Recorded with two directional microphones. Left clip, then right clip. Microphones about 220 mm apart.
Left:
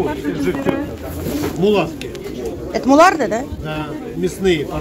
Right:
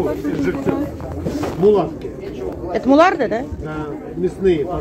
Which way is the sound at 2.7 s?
15° left (ahead or behind).